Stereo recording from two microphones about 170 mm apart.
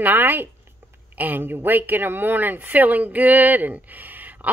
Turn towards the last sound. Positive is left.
turn(degrees=-10)  # may be behind; listen again after turning